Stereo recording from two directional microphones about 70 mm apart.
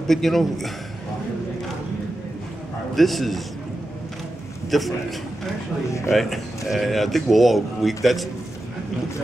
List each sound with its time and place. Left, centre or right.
0.0 s speech: centre
3.0 s speech: centre
4.6 s a man's voice: centre
5.9 s speech: left
6.1 s speech: centre